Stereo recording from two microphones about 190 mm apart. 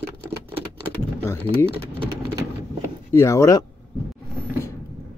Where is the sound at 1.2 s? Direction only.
10° left (ahead or behind).